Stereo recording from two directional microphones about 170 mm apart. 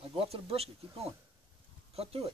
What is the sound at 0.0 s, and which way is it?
Speech, 35° right (ahead or behind).